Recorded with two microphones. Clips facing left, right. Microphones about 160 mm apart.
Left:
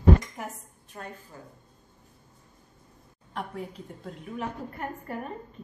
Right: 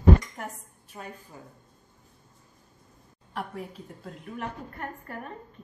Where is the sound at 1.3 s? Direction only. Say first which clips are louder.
Even; 15° right (ahead or behind).